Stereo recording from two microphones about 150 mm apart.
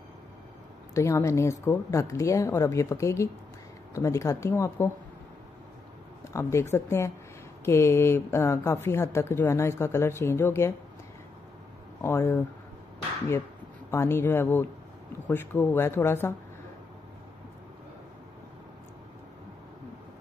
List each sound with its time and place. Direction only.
0.9 s a woman's voice: 20° left (ahead or behind)
6.2 s a woman's voice: 20° left (ahead or behind)
12.0 s speech: 15° left (ahead or behind)
13.8 s speech: 15° left (ahead or behind)